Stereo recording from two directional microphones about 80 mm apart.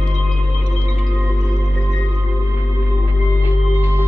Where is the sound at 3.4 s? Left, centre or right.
Right.